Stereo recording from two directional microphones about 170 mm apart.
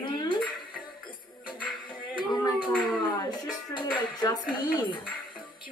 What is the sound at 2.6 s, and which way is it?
A woman's voice, 25° left (ahead or behind).